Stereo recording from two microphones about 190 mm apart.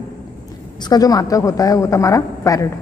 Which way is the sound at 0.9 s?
20° left (ahead or behind).